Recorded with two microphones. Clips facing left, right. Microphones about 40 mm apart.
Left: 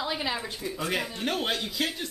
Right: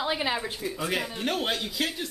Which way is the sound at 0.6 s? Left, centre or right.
Centre.